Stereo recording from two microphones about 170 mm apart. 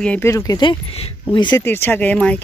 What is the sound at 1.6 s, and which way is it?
Speech, 15° left (ahead or behind).